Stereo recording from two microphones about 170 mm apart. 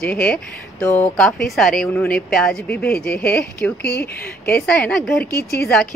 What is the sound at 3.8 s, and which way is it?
Speech, 70° left (ahead or behind).